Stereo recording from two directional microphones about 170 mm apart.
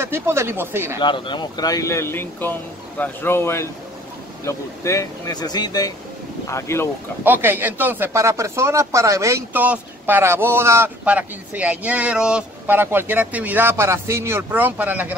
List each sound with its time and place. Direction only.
0.0 s speech: 15° right (ahead or behind)
1.0 s speech: 30° left (ahead or behind)
7.2 s speech: 10° right (ahead or behind)